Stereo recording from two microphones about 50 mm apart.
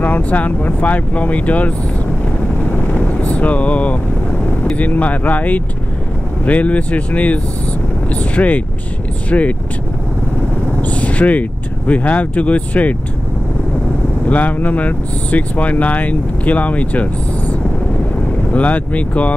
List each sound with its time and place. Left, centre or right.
0.0 s speech: left
2.9 s vehicle: left
4.7 s speech: left
10.8 s vehicle: left
11.9 s speech: left
14.3 s speech: left